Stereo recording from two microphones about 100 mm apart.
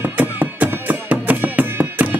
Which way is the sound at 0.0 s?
15° right (ahead or behind).